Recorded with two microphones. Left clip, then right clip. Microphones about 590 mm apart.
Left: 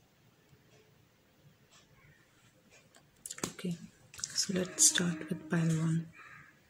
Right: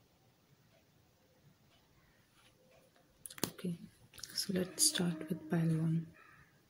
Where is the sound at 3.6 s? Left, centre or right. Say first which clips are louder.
Left 3 dB; right.